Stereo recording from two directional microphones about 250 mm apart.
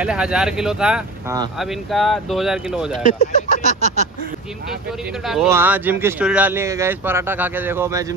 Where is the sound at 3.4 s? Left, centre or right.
Right.